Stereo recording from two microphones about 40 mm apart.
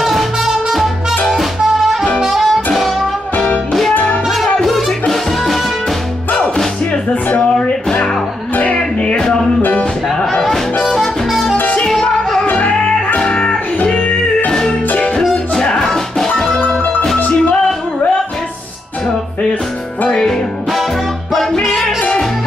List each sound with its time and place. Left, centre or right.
0.0 s music: centre
3.9 s music: left
4.8 s music: centre
6.9 s music: left
8.7 s music: left
9.6 s music: left
10.1 s music: centre
11.0 s music: centre
11.8 s music: centre
12.4 s music: left
13.2 s music: left
15.5 s music: centre
15.8 s music: centre
20.2 s music: centre